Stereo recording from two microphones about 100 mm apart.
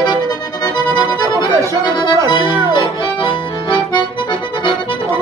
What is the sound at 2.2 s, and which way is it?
Music, 50° left (ahead or behind).